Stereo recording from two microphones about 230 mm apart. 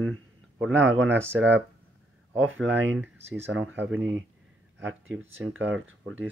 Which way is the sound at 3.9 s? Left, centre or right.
Right.